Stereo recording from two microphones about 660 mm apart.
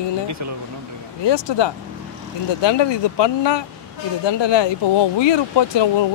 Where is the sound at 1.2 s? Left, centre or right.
Left.